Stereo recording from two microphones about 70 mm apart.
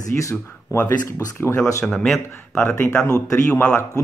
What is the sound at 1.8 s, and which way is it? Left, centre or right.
Speech, centre.